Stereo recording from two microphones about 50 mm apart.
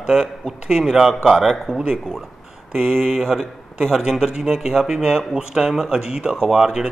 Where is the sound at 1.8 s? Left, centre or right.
Centre.